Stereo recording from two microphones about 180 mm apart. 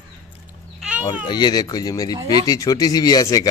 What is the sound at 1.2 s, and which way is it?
Speech, 25° left (ahead or behind).